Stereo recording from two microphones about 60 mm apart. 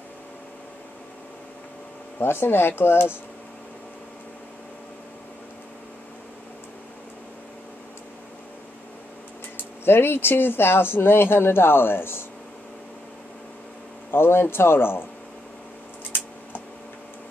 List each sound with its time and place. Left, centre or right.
2.1 s speech: left
9.8 s speech: left
14.1 s speech: left